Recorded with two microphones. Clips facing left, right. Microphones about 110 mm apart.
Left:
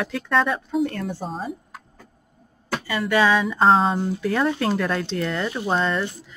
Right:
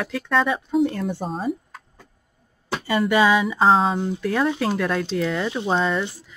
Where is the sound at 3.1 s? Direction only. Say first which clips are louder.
Left 1 dB; 5° right (ahead or behind).